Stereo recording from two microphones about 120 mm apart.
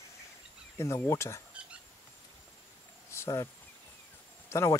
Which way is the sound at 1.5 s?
10° right (ahead or behind).